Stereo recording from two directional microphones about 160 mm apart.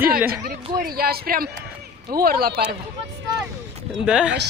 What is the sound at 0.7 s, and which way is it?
A man's voice, 70° right (ahead or behind).